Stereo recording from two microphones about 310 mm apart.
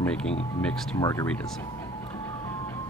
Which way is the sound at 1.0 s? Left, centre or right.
Centre.